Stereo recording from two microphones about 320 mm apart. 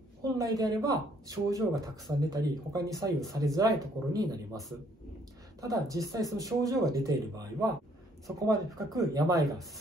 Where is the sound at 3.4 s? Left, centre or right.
Centre.